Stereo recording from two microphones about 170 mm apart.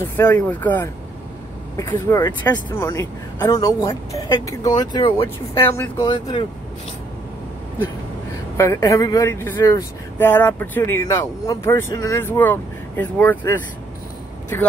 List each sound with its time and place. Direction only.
0.0 s a woman's voice: 20° left (ahead or behind)
0.5 s a woman's voice: 10° left (ahead or behind); by 6.4 s 25° left (ahead or behind)
8.5 s speech: 15° left (ahead or behind)